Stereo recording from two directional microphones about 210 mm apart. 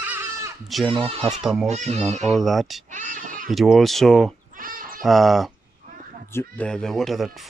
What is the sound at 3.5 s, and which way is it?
Speech, centre (ahead or behind).